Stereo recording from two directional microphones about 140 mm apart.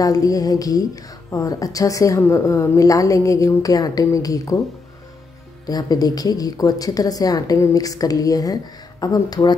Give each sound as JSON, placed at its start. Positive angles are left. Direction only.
{"t": 0.0, "sound": "speech", "side_deg": 25}
{"t": 5.7, "sound": "speech", "side_deg": 30}